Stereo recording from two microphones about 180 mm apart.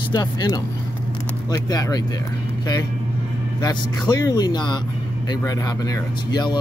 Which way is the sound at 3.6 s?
25° left (ahead or behind).